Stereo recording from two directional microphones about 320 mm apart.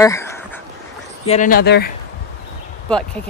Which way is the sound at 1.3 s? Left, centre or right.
Left.